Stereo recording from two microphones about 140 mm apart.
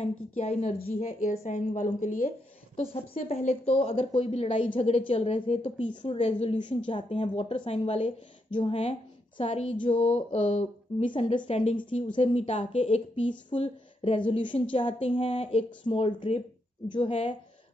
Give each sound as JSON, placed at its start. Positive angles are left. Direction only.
{"t": 0.0, "sound": "speech", "side_deg": 50}
{"t": 1.0, "sound": "a woman's voice", "side_deg": 70}
{"t": 2.7, "sound": "a woman's voice", "side_deg": 45}